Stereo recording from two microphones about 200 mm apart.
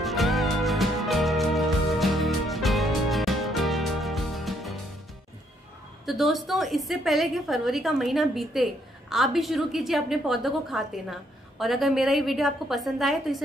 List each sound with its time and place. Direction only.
0.0 s music: centre (ahead or behind)
6.0 s a woman's voice: centre (ahead or behind)